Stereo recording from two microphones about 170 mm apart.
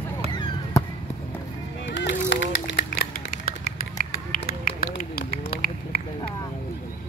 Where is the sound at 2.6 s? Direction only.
70° left (ahead or behind).